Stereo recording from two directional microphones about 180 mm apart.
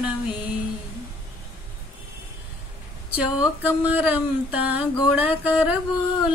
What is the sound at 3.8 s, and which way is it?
Speech, 10° right (ahead or behind).